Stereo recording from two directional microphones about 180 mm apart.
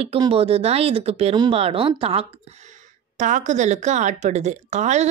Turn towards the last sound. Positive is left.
turn(degrees=-40)  # may be behind; listen again after turning